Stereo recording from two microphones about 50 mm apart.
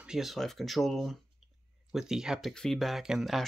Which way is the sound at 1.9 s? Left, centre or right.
Centre.